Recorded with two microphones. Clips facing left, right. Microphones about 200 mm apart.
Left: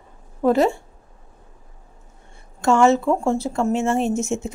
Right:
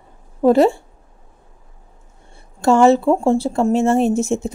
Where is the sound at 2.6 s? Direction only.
35° right (ahead or behind).